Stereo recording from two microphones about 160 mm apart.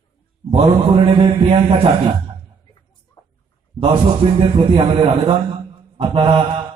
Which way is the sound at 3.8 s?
35° right (ahead or behind).